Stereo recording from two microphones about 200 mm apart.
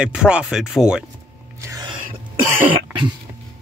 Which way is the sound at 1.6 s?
15° right (ahead or behind).